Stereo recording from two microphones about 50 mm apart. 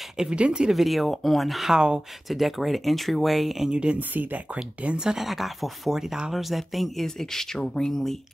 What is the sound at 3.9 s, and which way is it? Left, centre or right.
Speech, right.